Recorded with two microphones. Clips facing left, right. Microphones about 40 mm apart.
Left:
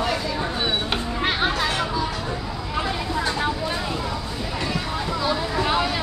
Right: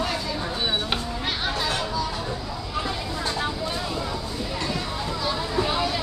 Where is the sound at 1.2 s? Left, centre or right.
Left.